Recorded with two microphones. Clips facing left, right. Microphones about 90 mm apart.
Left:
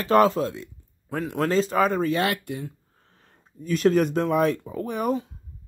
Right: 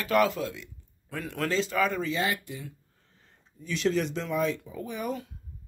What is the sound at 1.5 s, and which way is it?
Speech, 40° left (ahead or behind).